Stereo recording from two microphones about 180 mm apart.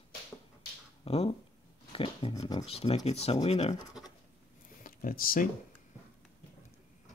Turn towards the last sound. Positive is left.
turn(degrees=55)  # may be behind; listen again after turning